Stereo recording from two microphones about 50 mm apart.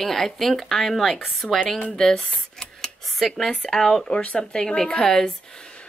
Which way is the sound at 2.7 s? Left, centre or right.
Centre.